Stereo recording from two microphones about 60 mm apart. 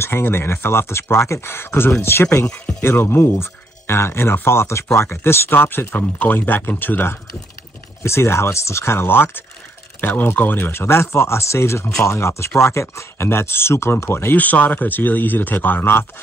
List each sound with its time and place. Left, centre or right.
0.0 s speech: left
8.0 s speech: left
14.3 s speech: left